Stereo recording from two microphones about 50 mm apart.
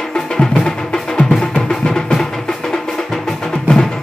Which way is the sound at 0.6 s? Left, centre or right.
Centre.